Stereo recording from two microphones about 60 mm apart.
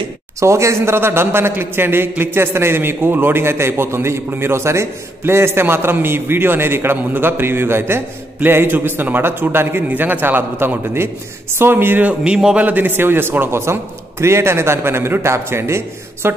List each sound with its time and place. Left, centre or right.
0.4 s a man's voice: right
12.2 s a man's voice: centre
12.6 s a man's voice: right